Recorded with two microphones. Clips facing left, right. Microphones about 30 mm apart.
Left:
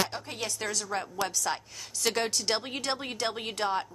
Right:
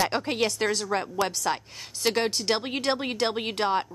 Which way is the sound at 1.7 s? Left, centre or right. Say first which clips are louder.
Right 4 dB; right.